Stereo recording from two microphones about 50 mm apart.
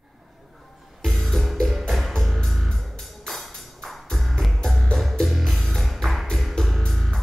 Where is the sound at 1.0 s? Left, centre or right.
Centre.